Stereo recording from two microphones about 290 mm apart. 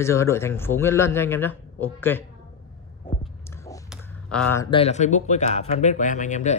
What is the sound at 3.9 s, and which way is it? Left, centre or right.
Speech, centre.